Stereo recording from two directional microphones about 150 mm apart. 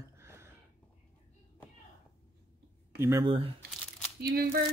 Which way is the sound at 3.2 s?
40° right (ahead or behind).